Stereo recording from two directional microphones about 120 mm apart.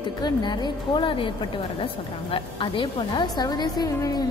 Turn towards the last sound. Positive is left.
turn(degrees=35)  # may be behind; listen again after turning